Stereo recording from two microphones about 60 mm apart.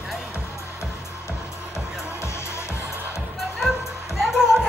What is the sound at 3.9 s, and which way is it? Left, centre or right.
Music, left.